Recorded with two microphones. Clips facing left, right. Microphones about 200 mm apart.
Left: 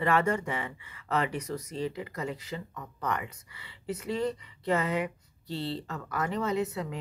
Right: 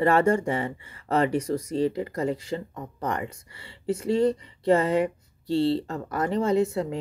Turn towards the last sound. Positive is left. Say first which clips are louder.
# right 7 dB
turn(degrees=-30)  # may be behind; listen again after turning